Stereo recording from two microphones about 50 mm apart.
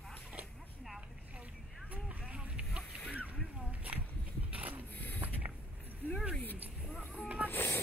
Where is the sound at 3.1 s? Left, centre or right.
Right.